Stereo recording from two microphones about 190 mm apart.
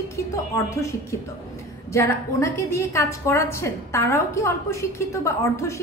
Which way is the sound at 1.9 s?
15° left (ahead or behind).